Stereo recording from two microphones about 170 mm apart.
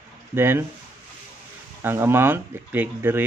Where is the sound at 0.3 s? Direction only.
15° right (ahead or behind).